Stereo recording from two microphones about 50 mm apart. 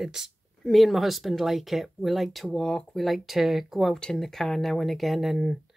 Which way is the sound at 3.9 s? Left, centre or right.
Centre.